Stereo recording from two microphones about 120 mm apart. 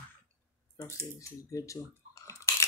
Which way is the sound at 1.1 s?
25° left (ahead or behind).